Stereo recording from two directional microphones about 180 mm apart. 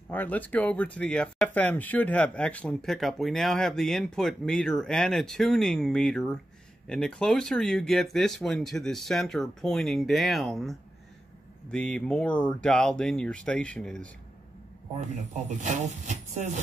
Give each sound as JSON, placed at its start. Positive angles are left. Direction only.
{"t": 0.1, "sound": "speech", "side_deg": 10}
{"t": 15.0, "sound": "speech", "side_deg": -40}